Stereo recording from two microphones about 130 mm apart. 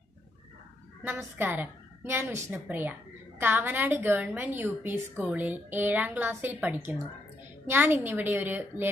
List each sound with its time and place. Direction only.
1.0 s a woman's voice: 15° right (ahead or behind)